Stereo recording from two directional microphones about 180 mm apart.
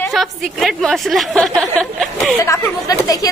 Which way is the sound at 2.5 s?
20° left (ahead or behind).